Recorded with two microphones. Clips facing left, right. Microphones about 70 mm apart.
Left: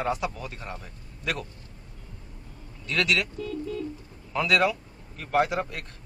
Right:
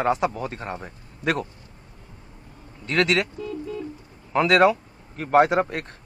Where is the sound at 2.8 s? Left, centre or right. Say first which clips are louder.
Right 5 dB; right.